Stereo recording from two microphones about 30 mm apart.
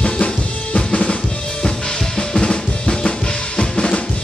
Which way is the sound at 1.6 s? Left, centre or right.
Left.